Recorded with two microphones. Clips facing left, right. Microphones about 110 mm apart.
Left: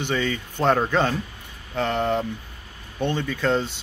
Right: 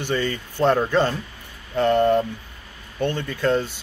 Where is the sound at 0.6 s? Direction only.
15° left (ahead or behind).